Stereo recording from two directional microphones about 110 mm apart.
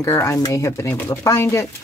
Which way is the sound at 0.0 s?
30° left (ahead or behind).